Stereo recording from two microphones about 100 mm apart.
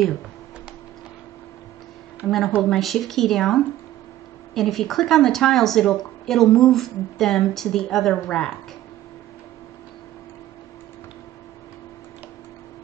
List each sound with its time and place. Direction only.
2.2 s speech: centre (ahead or behind)